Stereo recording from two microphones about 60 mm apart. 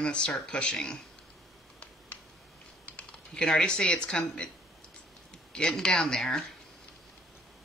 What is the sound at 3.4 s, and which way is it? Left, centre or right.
Speech, centre.